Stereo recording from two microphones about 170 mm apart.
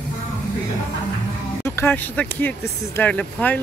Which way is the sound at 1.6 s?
15° left (ahead or behind).